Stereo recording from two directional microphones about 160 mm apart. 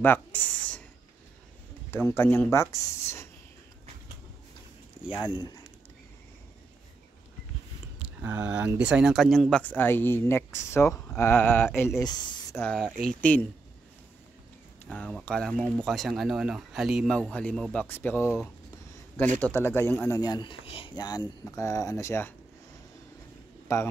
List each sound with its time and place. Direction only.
0.0 s a sound: 10° left (ahead or behind)
2.0 s speech: 15° left (ahead or behind)
8.0 s speech: 10° right (ahead or behind); by 11.9 s 15° left (ahead or behind)
12.0 s speech: 25° left (ahead or behind)
12.5 s speech: 5° left (ahead or behind)
14.9 s speech: 5° left (ahead or behind)
19.4 s speech: 15° left (ahead or behind)
23.7 s speech: 20° left (ahead or behind)